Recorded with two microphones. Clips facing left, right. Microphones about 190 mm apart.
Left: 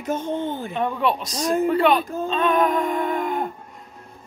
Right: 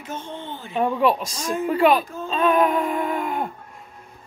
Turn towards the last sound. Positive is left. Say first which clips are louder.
# left 1 dB
turn(degrees=-5)  # may be behind; listen again after turning